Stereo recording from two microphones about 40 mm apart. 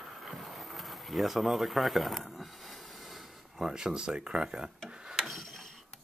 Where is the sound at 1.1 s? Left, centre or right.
Centre.